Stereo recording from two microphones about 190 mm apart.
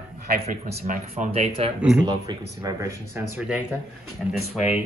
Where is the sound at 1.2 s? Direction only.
35° right (ahead or behind).